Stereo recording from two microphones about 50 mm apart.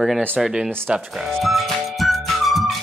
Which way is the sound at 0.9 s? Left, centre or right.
Centre.